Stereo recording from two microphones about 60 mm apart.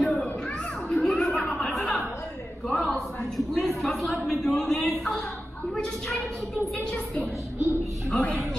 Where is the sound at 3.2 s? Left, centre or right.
Centre.